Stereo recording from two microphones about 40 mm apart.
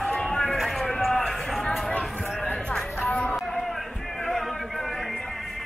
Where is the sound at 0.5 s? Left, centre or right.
Centre.